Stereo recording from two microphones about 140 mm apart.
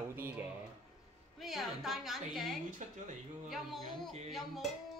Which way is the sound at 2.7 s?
60° right (ahead or behind).